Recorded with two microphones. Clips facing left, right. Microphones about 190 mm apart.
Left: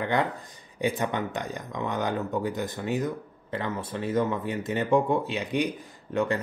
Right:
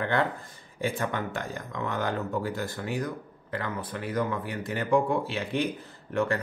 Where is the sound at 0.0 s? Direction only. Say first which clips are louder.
Left 1 dB; 15° left (ahead or behind).